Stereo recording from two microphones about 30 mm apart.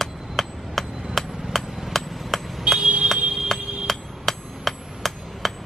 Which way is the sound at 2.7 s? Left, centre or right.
Right.